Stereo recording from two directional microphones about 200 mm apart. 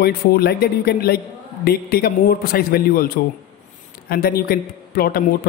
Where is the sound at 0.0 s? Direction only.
50° left (ahead or behind).